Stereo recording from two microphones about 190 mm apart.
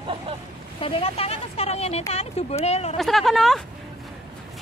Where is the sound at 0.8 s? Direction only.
30° left (ahead or behind).